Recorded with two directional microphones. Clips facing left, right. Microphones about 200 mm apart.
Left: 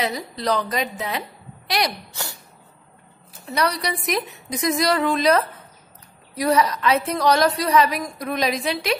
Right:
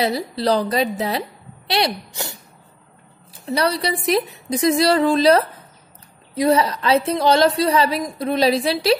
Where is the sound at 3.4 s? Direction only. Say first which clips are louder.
Right 3 dB; 30° right (ahead or behind).